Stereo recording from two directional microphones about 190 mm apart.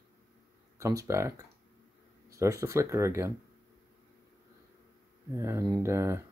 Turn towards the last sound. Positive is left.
turn(degrees=-15)  # may be behind; listen again after turning